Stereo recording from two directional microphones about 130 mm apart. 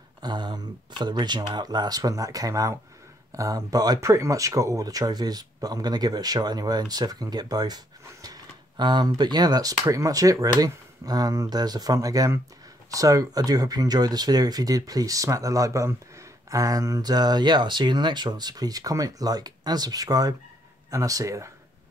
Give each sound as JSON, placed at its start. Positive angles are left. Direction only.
{"t": 0.2, "sound": "speech", "side_deg": -35}